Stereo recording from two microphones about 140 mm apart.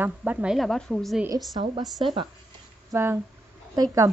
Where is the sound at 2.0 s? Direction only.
35° right (ahead or behind).